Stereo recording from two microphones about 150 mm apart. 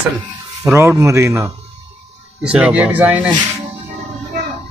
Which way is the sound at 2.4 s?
5° right (ahead or behind).